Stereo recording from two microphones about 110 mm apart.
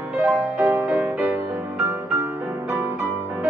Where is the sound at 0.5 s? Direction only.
15° right (ahead or behind).